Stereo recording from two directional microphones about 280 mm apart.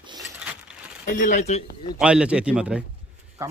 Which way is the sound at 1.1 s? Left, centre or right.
Left.